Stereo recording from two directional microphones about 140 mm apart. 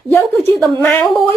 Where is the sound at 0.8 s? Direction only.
10° left (ahead or behind).